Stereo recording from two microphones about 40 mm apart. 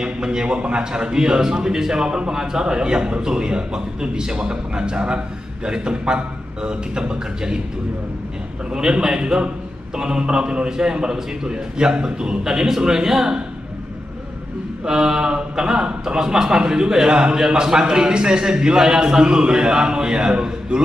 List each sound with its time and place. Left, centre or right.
0.0 s a man's voice: centre
8.7 s a man's voice: centre
14.9 s a man's voice: centre